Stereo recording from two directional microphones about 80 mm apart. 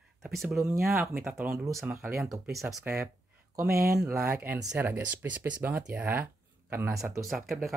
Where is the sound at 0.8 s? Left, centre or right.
Centre.